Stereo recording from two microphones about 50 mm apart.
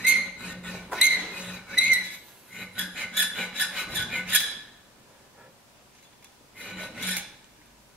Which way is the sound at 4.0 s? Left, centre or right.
Centre.